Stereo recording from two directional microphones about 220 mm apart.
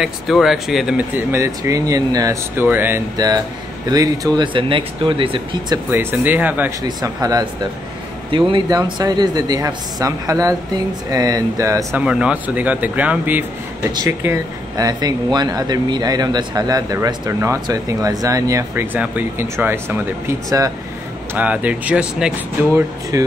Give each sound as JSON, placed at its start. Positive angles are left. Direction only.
{"t": 0.0, "sound": "speech", "side_deg": 0}
{"t": 5.9, "sound": "speech", "side_deg": -10}